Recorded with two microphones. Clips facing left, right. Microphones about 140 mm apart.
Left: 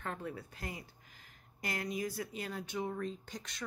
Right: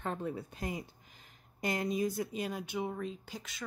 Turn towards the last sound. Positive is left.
turn(degrees=-5)  # may be behind; listen again after turning